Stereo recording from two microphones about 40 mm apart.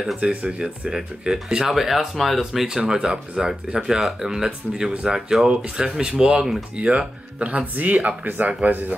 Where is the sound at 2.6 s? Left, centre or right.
Centre; by 8.3 s right.